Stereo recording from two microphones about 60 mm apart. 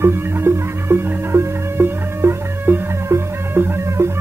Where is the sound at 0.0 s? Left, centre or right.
Right.